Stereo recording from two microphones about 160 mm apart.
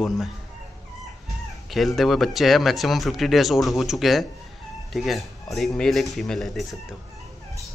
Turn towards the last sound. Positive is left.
turn(degrees=0)  # may be behind; listen again after turning